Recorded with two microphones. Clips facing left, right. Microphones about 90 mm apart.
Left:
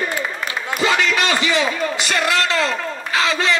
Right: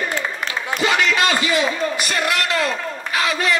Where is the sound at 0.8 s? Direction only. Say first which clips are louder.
Even; 25° left (ahead or behind).